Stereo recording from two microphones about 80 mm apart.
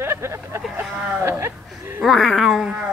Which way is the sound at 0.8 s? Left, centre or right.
Centre.